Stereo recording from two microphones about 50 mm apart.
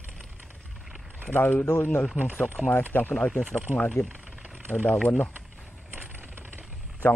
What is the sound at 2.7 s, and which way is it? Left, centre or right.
Speech, left.